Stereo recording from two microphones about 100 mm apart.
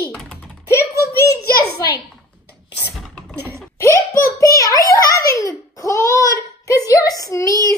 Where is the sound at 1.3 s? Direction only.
40° left (ahead or behind).